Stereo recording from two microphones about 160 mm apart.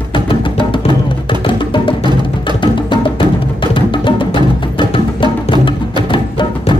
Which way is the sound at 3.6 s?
30° left (ahead or behind).